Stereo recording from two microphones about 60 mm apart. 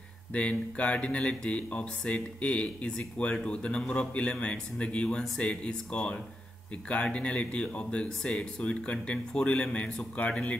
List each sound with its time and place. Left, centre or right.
0.3 s speech: left